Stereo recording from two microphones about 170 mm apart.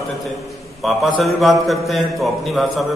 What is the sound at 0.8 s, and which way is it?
A man's voice, centre (ahead or behind).